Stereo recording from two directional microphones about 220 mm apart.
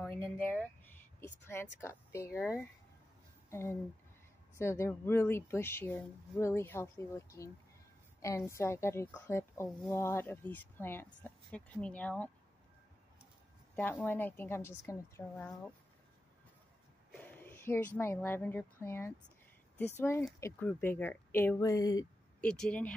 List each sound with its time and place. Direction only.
0.1 s speech: 10° left (ahead or behind)
13.7 s speech: 10° left (ahead or behind)
17.1 s speech: 5° left (ahead or behind)
22.4 s speech: 5° left (ahead or behind)